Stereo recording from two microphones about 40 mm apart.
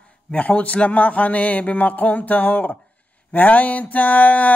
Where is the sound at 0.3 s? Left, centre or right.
Left.